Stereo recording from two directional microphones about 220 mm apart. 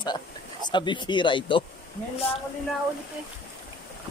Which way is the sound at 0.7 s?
20° left (ahead or behind).